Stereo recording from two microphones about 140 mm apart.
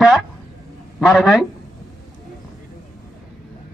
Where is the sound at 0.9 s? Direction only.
Centre (ahead or behind).